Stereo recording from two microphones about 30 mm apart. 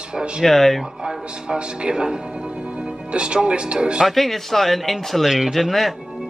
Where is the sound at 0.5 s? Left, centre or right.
Centre.